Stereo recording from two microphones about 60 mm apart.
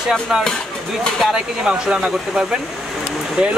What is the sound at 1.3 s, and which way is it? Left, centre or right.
Speech, centre.